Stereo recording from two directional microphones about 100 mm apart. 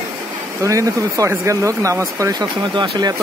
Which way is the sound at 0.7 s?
35° right (ahead or behind).